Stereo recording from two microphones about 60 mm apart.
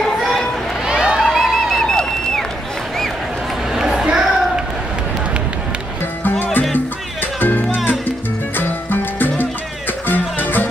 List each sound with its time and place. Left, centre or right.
0.8 s run: centre
1.2 s music: centre
3.7 s a sound: centre
7.3 s music: left